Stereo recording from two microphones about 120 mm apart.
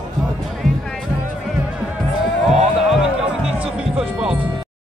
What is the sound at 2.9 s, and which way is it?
Music, 5° right (ahead or behind).